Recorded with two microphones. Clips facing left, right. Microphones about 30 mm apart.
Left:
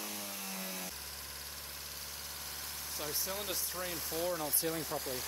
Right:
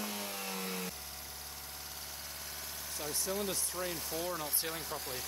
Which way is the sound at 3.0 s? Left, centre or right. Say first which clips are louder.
Right 2 dB; centre.